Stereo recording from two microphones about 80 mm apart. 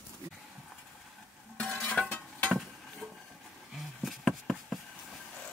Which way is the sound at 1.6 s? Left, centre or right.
Centre.